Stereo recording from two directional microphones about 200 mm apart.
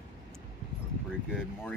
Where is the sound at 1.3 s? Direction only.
Centre (ahead or behind).